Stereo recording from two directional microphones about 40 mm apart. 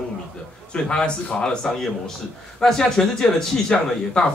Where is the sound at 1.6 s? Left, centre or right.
Centre.